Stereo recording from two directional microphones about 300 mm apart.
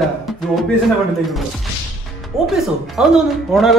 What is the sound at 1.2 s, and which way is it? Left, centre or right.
A man's voice, centre.